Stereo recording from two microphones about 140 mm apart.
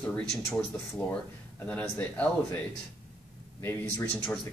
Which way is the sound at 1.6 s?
10° left (ahead or behind).